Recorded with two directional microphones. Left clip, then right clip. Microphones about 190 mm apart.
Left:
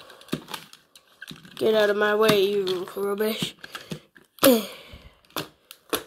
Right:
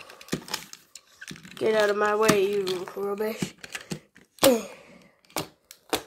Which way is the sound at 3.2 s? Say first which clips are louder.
Left 4 dB; 35° left (ahead or behind).